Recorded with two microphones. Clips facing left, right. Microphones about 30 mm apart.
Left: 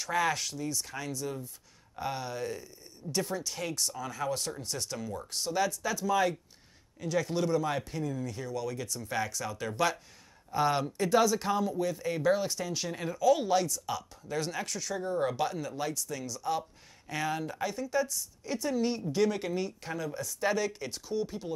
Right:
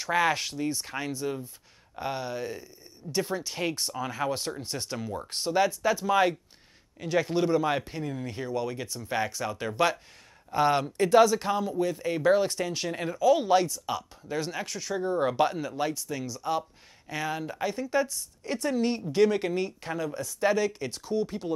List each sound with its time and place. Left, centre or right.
0.0 s speech: right